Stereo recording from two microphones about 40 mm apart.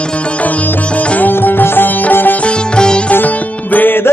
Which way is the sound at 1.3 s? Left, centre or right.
Left.